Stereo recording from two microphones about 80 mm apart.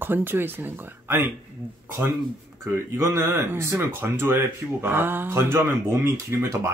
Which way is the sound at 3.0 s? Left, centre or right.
Right.